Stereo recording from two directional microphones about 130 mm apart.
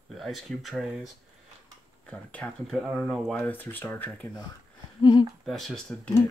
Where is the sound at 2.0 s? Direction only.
10° left (ahead or behind).